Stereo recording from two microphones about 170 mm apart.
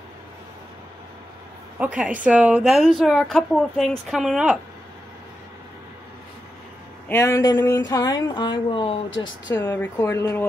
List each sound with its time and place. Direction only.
2.0 s a woman's voice: 5° right (ahead or behind)
7.1 s speech: 15° left (ahead or behind)
9.5 s speech: 10° left (ahead or behind)